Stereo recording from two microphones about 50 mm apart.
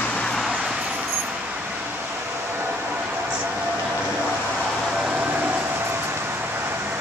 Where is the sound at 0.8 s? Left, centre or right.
Right.